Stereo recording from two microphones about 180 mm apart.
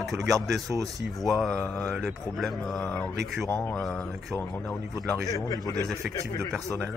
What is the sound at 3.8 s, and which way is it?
Speech, centre (ahead or behind).